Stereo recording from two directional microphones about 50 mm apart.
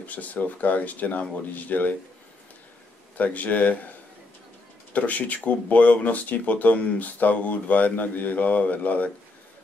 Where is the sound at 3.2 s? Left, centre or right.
Left.